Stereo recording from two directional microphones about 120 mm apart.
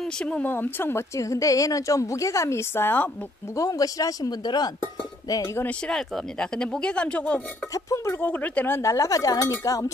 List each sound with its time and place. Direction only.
0.0 s speech: 5° left (ahead or behind)
0.5 s a woman's voice: 15° left (ahead or behind)
3.5 s speech: 30° left (ahead or behind)
5.6 s speech: 10° left (ahead or behind)
7.7 s a woman's voice: 30° left (ahead or behind)
8.2 s a woman's voice: 15° left (ahead or behind)